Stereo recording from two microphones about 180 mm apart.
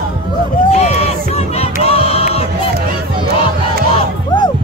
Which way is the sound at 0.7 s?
35° left (ahead or behind).